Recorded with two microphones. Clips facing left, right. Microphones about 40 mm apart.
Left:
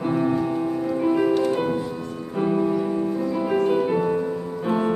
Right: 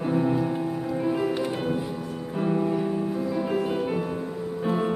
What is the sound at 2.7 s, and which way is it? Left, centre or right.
Music, centre.